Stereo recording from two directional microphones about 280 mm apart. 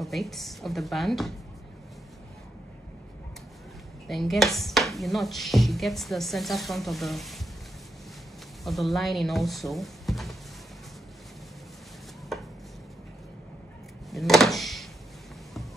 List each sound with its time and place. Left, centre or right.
0.0 s speech: centre
4.1 s speech: centre
8.6 s speech: centre
12.3 s chopping: centre
14.1 s a sound: centre